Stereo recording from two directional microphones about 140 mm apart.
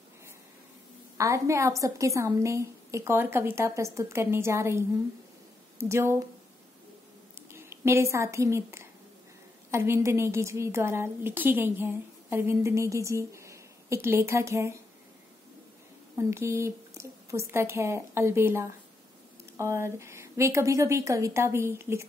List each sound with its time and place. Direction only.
1.1 s a woman's voice: 20° right (ahead or behind)
7.5 s a woman's voice: 20° right (ahead or behind)
16.2 s a woman's voice: 20° right (ahead or behind)